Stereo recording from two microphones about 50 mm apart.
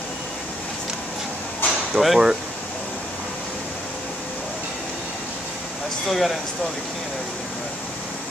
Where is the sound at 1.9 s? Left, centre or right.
Centre.